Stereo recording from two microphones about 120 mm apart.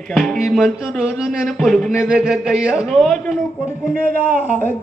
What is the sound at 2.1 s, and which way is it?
Speech, 5° right (ahead or behind).